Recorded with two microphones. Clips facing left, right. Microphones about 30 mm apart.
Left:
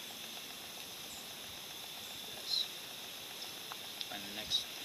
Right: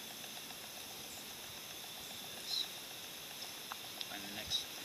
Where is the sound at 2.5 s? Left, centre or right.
Left.